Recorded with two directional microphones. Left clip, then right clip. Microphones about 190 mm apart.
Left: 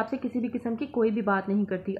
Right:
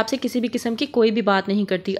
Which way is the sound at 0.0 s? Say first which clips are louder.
Right 7 dB; 30° right (ahead or behind).